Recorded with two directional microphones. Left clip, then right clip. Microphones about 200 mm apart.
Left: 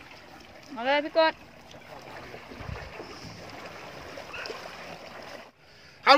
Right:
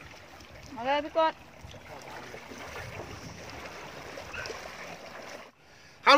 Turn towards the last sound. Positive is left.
turn(degrees=-5)  # may be behind; listen again after turning